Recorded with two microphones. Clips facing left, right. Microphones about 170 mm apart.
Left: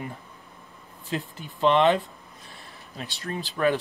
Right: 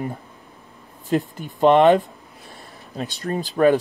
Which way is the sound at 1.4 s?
50° right (ahead or behind).